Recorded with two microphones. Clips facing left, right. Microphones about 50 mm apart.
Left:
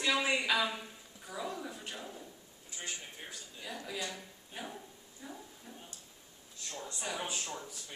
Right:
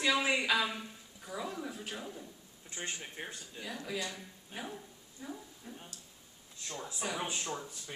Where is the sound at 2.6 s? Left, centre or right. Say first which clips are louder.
Right 2 dB; right.